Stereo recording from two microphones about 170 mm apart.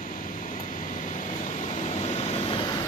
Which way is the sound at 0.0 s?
50° left (ahead or behind).